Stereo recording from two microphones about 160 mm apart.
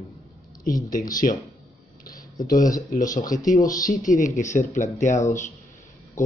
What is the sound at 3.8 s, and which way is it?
Speech, 55° left (ahead or behind).